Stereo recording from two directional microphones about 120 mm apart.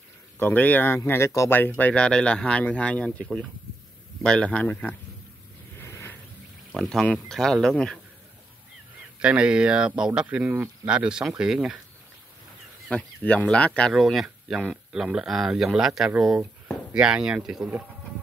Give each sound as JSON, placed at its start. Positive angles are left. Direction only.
{"t": 0.4, "sound": "speech", "side_deg": 15}
{"t": 5.8, "sound": "a sound", "side_deg": 20}
{"t": 6.7, "sound": "speech", "side_deg": 0}
{"t": 9.2, "sound": "speech", "side_deg": -10}
{"t": 12.9, "sound": "speech", "side_deg": 10}